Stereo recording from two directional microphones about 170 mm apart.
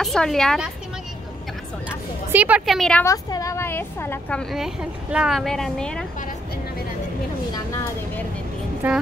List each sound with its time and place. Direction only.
0.0 s a woman's voice: centre (ahead or behind)
2.3 s a woman's voice: 10° right (ahead or behind)
3.0 s a woman's voice: 20° left (ahead or behind)
7.5 s a sound: 15° left (ahead or behind)
8.8 s speech: 10° right (ahead or behind)